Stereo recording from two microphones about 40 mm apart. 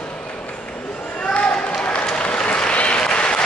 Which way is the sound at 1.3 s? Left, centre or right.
Left.